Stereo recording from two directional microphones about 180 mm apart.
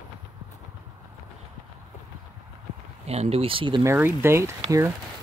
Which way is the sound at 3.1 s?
35° right (ahead or behind).